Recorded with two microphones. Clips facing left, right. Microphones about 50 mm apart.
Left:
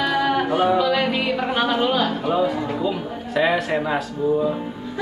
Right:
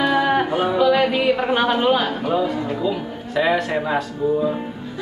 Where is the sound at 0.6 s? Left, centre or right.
Centre.